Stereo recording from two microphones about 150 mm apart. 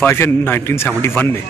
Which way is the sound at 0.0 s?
15° left (ahead or behind).